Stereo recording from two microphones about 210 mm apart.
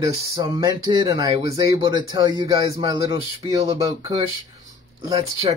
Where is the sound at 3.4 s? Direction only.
25° right (ahead or behind).